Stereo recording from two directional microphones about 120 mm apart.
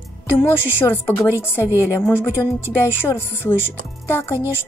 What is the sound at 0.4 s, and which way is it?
Speech, 20° left (ahead or behind).